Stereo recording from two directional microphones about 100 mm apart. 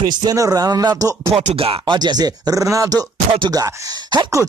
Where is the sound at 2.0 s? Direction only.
45° right (ahead or behind).